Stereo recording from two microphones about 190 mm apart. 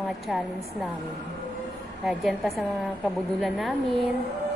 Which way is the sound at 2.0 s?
Centre (ahead or behind).